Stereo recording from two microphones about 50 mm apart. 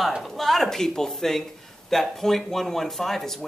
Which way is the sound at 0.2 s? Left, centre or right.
Centre.